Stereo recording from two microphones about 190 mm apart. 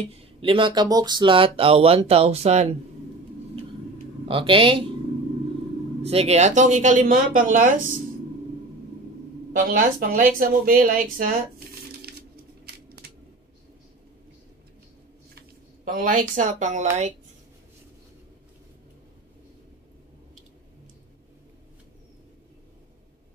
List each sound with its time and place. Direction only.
0.1 s speech: 25° right (ahead or behind)
4.3 s speech: 30° right (ahead or behind)
6.0 s speech: 35° right (ahead or behind)
9.5 s speech: 45° right (ahead or behind)
12.0 s a sound: 55° right (ahead or behind)
15.8 s speech: 45° right (ahead or behind)